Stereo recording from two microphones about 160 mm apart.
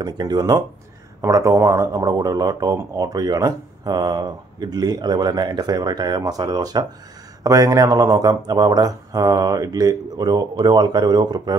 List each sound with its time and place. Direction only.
0.0 s a man's voice: 25° right (ahead or behind)